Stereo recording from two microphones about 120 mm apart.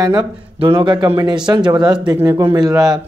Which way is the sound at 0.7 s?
40° right (ahead or behind).